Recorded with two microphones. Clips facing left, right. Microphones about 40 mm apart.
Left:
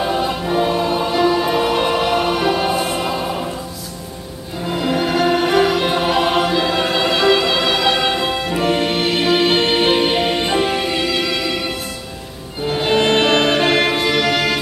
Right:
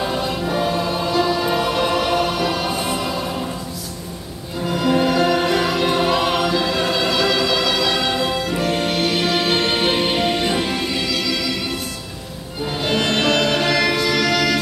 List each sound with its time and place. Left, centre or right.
0.0 s choir: centre
2.8 s music: left
4.6 s music: centre
12.6 s music: left